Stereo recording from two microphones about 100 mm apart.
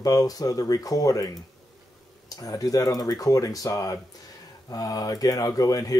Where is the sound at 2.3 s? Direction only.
35° left (ahead or behind).